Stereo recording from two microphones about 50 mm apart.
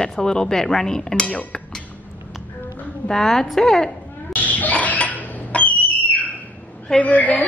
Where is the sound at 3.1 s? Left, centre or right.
Centre.